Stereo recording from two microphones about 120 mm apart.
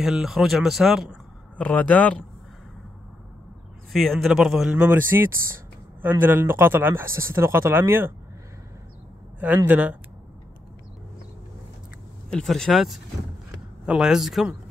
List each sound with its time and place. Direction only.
0.0 s speech: centre (ahead or behind)
1.6 s speech: 10° left (ahead or behind)
3.9 s speech: centre (ahead or behind); by 8.1 s 20° right (ahead or behind)
9.7 s speech: 15° right (ahead or behind)
12.3 s speech: 5° left (ahead or behind)